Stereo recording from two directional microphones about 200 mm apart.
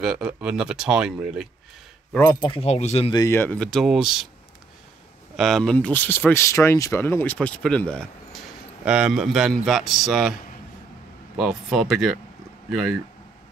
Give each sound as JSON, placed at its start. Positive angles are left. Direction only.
{"t": 0.0, "sound": "speech", "side_deg": 0}
{"t": 2.1, "sound": "speech", "side_deg": 20}
{"t": 3.2, "sound": "speech", "side_deg": 10}
{"t": 5.3, "sound": "speech", "side_deg": 0}
{"t": 11.3, "sound": "speech", "side_deg": 0}